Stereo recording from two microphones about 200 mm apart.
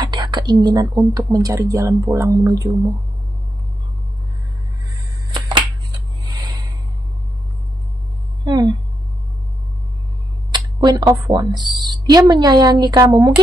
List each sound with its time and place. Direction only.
0.0 s whispering: 20° right (ahead or behind)
1.1 s speech: 15° right (ahead or behind)
5.3 s a sound: 20° right (ahead or behind)
8.5 s speech: 15° right (ahead or behind)
10.5 s a woman's voice: 20° right (ahead or behind)